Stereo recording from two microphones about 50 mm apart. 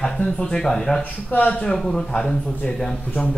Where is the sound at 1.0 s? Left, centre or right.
Left.